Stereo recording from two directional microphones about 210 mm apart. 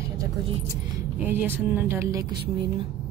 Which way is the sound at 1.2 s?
10° right (ahead or behind).